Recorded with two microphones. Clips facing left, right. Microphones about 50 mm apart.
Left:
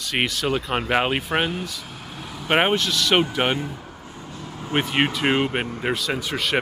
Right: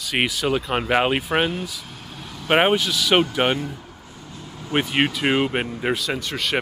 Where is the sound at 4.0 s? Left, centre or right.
Left.